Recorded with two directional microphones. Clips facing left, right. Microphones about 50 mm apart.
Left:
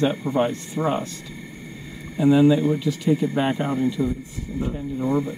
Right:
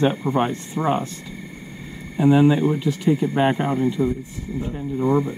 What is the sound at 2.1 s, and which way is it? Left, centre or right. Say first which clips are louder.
Speech: even; right.